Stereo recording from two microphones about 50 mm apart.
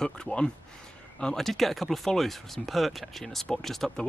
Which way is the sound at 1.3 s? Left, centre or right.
Centre.